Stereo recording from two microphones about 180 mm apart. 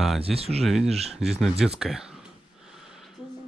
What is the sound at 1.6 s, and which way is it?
Speech, 5° right (ahead or behind).